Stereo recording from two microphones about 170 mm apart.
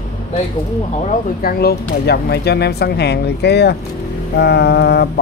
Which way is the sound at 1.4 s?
65° left (ahead or behind).